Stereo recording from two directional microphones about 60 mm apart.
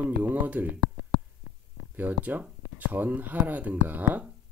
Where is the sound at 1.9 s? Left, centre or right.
Right.